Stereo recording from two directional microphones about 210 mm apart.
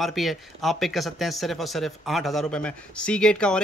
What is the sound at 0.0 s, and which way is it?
Speech, centre (ahead or behind).